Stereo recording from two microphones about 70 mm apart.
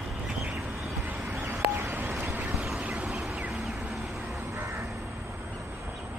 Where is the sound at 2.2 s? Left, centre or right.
Right.